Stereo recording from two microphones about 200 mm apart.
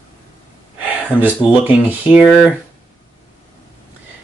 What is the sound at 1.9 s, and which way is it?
Speech, 5° right (ahead or behind).